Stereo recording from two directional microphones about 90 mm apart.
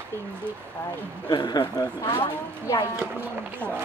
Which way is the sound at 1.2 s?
55° left (ahead or behind).